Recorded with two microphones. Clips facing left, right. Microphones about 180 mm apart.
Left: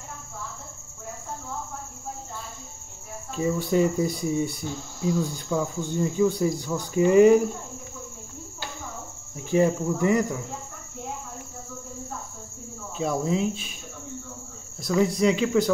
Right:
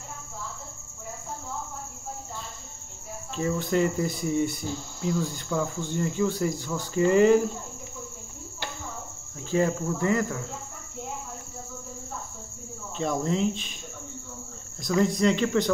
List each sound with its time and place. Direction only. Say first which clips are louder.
3.3 s speech: left 2 dB; 10° left (ahead or behind)
4.6 s speech: even; 10° right (ahead or behind)
5.0 s speech: left 3 dB; 10° left (ahead or behind)
9.4 s speech: left 3 dB; 15° left (ahead or behind)
12.9 s speech: left 1 dB; 5° left (ahead or behind)
14.8 s speech: left 1 dB; 5° left (ahead or behind)